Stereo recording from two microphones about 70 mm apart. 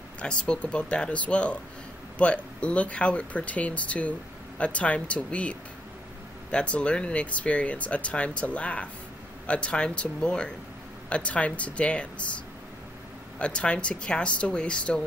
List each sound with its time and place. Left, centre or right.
0.2 s speech: centre
13.4 s speech: centre